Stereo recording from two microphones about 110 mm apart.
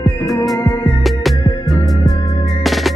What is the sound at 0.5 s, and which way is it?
Music, 30° left (ahead or behind).